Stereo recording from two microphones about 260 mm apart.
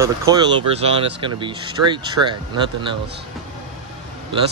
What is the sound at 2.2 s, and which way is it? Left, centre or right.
Speech, right.